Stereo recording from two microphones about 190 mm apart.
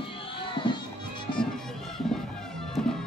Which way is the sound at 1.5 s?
Centre (ahead or behind).